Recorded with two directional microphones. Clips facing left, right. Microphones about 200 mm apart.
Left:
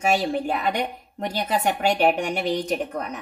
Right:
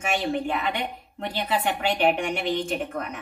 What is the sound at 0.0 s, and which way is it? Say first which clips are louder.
A woman's voice: left 3 dB; 35° left (ahead or behind).